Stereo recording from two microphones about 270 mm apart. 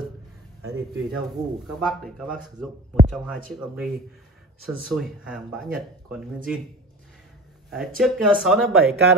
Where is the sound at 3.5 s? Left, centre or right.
Centre.